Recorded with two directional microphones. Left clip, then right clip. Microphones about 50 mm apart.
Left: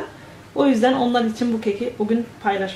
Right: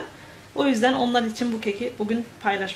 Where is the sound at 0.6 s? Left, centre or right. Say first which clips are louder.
Left 3 dB; right.